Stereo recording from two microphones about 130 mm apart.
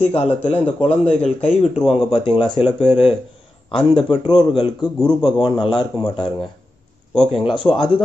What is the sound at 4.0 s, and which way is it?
Speech, 40° left (ahead or behind).